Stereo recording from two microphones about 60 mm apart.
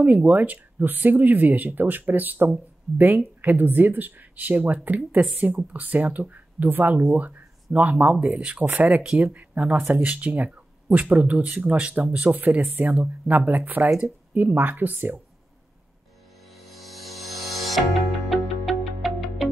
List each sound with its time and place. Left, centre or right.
0.0 s speech: right
16.5 s music: centre